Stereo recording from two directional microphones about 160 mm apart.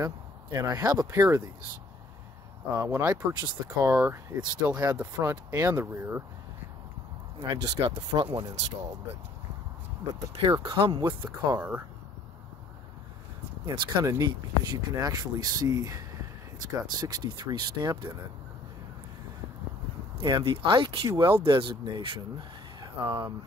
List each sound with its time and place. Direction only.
0.0 s speech: 25° right (ahead or behind)
2.7 s speech: 15° right (ahead or behind)
7.4 s speech: 25° right (ahead or behind)
10.1 s speech: 25° right (ahead or behind)
13.7 s speech: 25° right (ahead or behind)
17.0 s speech: 25° right (ahead or behind)
20.2 s speech: 30° right (ahead or behind)